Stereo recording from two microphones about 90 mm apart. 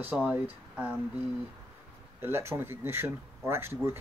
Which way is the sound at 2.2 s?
25° right (ahead or behind).